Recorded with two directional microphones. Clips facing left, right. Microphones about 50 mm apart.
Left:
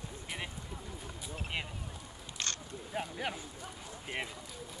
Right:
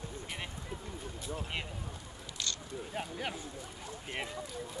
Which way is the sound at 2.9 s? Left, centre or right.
Centre.